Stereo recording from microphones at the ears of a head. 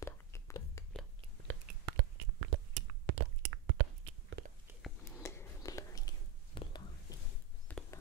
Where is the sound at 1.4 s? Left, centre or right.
Right.